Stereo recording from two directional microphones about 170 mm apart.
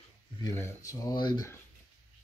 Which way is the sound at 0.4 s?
20° left (ahead or behind).